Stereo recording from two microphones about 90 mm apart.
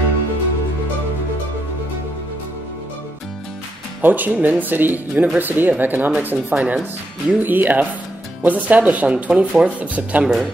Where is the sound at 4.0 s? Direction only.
20° right (ahead or behind).